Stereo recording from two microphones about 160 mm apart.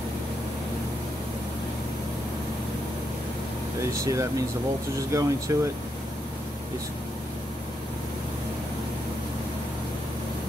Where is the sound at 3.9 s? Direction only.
20° right (ahead or behind).